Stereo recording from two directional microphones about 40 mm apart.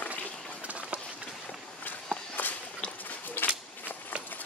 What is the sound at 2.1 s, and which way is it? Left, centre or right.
Walk, left.